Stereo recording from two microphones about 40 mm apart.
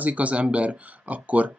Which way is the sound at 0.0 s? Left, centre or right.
Right.